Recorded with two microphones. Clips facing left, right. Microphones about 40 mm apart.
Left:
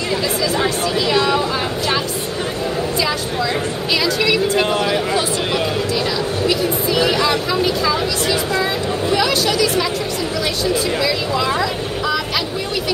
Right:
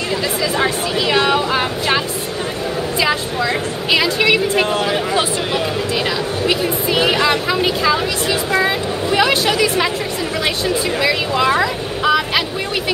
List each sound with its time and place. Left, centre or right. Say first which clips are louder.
0.6 s vehicle: right 1 dB; right
3.0 s a sound: right 2 dB; right
4.7 s speech: even; right
6.4 s vehicle: right 1 dB; right
7.6 s speech: right 2 dB; right
11.0 s vehicle: right 2 dB; right